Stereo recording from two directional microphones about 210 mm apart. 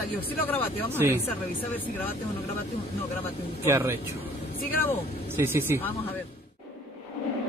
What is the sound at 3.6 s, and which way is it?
Speech, 10° right (ahead or behind).